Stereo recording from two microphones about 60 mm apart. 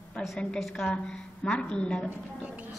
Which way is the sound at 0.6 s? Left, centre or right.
Centre.